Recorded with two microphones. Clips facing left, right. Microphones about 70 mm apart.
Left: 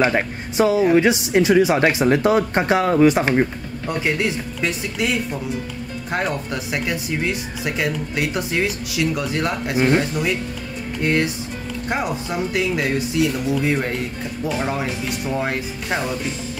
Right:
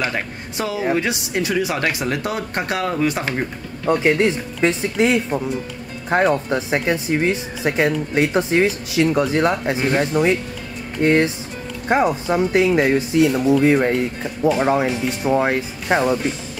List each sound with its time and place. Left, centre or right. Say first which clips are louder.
0.0 s speech: left 5 dB; left
3.8 s speech: right 6 dB; right